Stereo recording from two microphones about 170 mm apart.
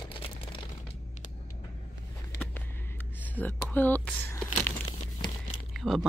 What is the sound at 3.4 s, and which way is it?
Speech, 10° left (ahead or behind).